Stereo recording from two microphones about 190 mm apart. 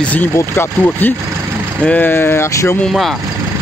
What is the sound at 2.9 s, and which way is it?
Speech, centre (ahead or behind).